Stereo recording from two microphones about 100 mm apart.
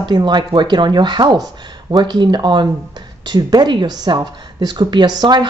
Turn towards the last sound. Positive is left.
turn(degrees=-45)  # may be behind; listen again after turning